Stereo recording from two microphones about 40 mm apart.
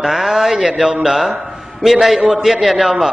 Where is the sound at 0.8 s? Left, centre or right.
Centre.